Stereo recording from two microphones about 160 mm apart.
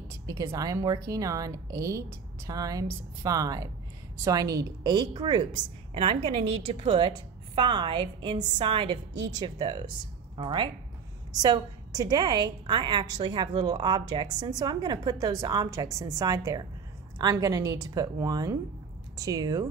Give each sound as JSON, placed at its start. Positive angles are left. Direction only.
{"t": 0.1, "sound": "a woman's voice", "side_deg": -20}